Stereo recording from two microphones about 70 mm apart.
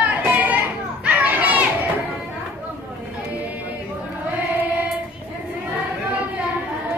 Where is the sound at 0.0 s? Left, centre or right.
Right.